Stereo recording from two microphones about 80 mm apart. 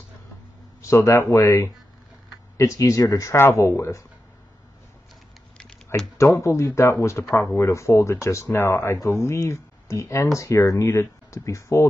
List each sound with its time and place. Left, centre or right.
0.8 s speech: left
6.1 s speech: left